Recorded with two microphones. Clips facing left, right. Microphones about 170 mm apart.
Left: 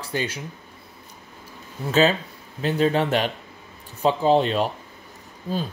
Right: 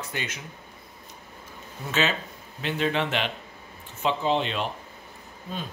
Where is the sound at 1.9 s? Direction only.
35° left (ahead or behind).